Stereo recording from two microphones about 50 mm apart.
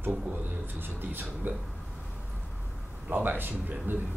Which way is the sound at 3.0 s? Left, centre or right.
Right.